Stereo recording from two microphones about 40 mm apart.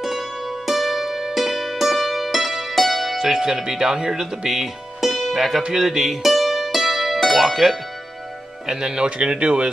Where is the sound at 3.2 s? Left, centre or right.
Centre.